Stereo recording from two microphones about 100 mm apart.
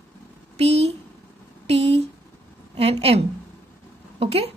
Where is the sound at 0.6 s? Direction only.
90° right.